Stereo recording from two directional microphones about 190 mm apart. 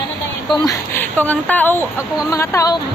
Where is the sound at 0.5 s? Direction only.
20° left (ahead or behind).